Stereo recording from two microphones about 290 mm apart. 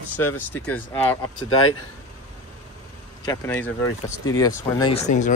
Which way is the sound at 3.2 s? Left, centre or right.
Centre.